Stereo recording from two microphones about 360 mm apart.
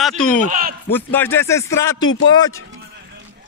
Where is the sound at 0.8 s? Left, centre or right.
Centre.